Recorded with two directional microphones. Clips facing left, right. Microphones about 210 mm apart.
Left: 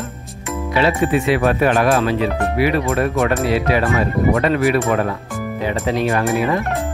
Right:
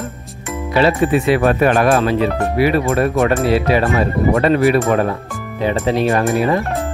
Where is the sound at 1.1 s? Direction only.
45° right (ahead or behind).